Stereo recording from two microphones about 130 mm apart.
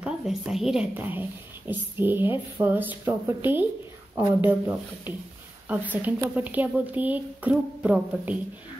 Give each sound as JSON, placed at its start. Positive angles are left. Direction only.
{"t": 0.0, "sound": "a woman's voice", "side_deg": -5}
{"t": 0.9, "sound": "speech", "side_deg": -15}